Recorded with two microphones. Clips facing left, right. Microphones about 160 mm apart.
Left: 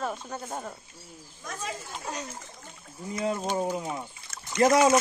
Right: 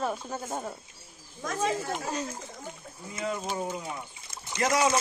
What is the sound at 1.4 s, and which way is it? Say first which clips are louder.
Speech: right 8 dB; 90° right.